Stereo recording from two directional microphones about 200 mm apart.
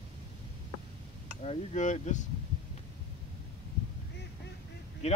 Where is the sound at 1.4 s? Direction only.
35° left (ahead or behind).